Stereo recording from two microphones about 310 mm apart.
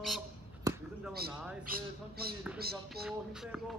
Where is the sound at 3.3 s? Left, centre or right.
Centre.